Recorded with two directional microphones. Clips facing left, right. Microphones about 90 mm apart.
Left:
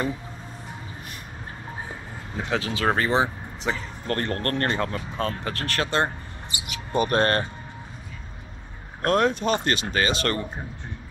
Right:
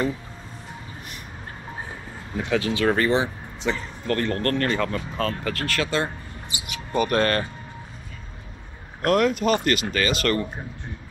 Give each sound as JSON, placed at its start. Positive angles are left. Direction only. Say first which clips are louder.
{"t": 2.3, "sound": "speech", "louder": "right 3 dB", "side_deg": 30}
{"t": 3.7, "sound": "speech", "louder": "right 2 dB", "side_deg": 20}
{"t": 4.1, "sound": "speech", "louder": "right 3 dB", "side_deg": 40}
{"t": 9.0, "sound": "speech", "louder": "right 1 dB", "side_deg": 35}